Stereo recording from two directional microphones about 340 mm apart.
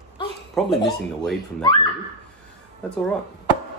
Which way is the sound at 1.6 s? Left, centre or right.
Centre.